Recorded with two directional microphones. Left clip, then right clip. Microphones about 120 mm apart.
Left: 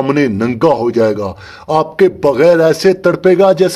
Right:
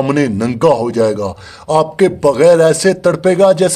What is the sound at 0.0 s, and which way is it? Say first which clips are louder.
A man's voice: left 1 dB; 20° left (ahead or behind).